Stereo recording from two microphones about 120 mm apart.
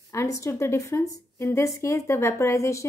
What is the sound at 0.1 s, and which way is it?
A woman's voice, 25° left (ahead or behind).